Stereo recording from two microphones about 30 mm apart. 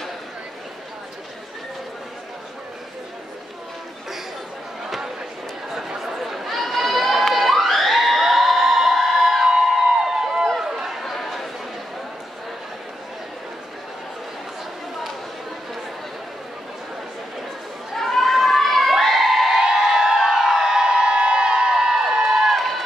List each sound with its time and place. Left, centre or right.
4.8 s a sound: centre
7.2 s crowd: centre
10.6 s run: centre
11.0 s chatter: centre
17.9 s crowd: centre
19.9 s crowd: centre
22.6 s run: centre